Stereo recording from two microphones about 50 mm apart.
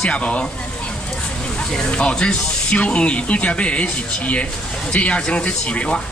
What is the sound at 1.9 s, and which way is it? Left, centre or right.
A man's voice, left.